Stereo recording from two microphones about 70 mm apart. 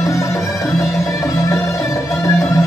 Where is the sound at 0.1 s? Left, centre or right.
Left.